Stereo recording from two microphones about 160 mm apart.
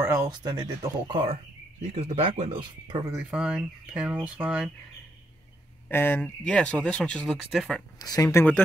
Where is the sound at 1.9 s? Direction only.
40° right (ahead or behind).